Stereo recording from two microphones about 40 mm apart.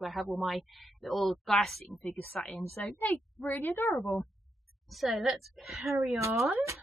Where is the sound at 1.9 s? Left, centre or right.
Left.